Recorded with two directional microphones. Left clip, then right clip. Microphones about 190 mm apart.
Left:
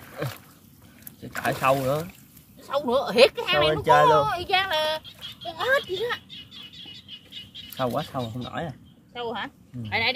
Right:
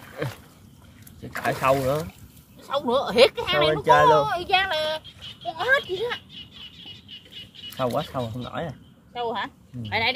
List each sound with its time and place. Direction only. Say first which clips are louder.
1.2 s speech: right 1 dB; 5° right (ahead or behind)
7.7 s speech: right 1 dB; 5° left (ahead or behind)
9.1 s a woman's voice: right 3 dB; 20° right (ahead or behind)
9.8 s speech: right 1 dB; 10° right (ahead or behind)